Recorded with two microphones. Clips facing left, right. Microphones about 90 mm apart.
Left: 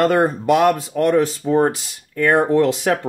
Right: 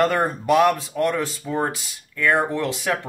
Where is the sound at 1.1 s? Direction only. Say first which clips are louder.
Left 9 dB; 35° left (ahead or behind).